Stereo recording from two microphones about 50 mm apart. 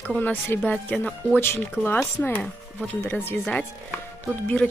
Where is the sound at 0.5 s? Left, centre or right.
Left.